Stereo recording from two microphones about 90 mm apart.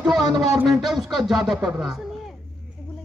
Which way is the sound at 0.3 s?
5° right (ahead or behind).